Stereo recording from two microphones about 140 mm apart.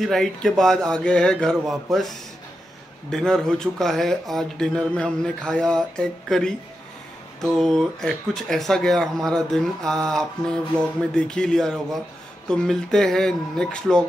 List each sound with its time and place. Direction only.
0.0 s speech: centre (ahead or behind)
3.1 s speech: 5° left (ahead or behind)